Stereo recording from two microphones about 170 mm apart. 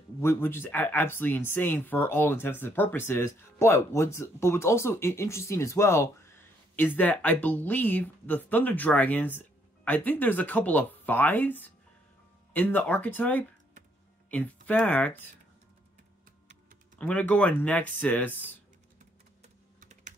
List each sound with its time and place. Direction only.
0.2 s speech: 15° left (ahead or behind)
17.0 s speech: 10° left (ahead or behind)
19.4 s typing: 45° right (ahead or behind)